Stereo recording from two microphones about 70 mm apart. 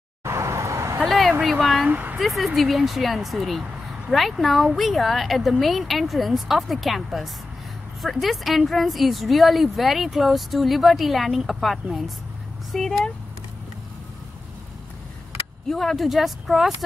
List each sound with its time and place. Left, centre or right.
0.2 s vehicle: right
1.0 s a sound: centre
1.4 s a woman's voice: centre
1.9 s speech: right
2.1 s a woman's voice: centre
15.7 s a woman's voice: centre